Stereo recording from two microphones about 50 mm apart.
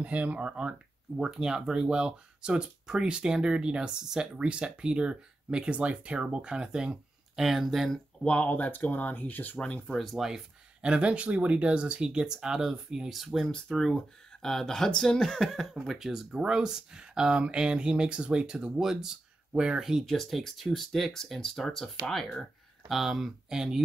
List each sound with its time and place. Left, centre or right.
0.0 s speech: right
1.2 s speech: centre
8.3 s speech: left
9.6 s speech: left
9.9 s speech: centre
10.8 s speech: right; by 13.5 s centre
13.5 s speech: centre
15.8 s speech: centre
19.8 s speech: centre